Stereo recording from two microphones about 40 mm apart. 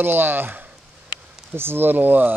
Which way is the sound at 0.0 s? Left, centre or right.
Right.